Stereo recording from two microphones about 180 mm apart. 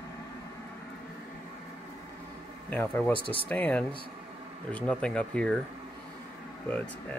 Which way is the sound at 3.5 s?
10° left (ahead or behind).